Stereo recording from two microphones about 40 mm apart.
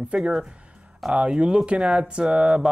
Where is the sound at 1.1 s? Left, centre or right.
Right.